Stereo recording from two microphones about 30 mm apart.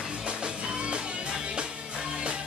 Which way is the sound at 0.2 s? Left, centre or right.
Right.